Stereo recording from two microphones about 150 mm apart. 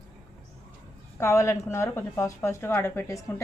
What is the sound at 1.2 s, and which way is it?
A woman's voice, 20° left (ahead or behind).